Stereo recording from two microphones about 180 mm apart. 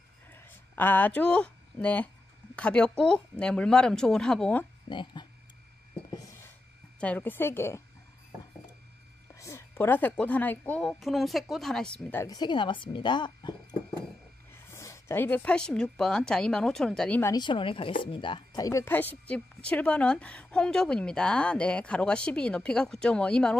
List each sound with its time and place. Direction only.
0.3 s a sound: 10° left (ahead or behind)
2.5 s a woman's voice: 5° left (ahead or behind)
4.8 s speech: 25° left (ahead or behind)
7.0 s a woman's voice: 10° left (ahead or behind)
9.3 s a woman's voice: 15° left (ahead or behind)
17.2 s a woman's voice: 20° left (ahead or behind); by 23.6 s 5° left (ahead or behind)